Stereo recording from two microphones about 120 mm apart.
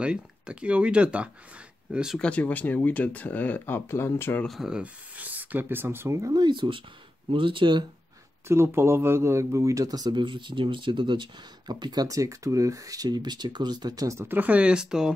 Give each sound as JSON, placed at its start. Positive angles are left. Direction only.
{"t": 0.0, "sound": "speech", "side_deg": -10}
{"t": 2.1, "sound": "speech", "side_deg": 10}
{"t": 4.5, "sound": "speech", "side_deg": -5}
{"t": 6.4, "sound": "speech", "side_deg": -45}
{"t": 8.5, "sound": "speech", "side_deg": -20}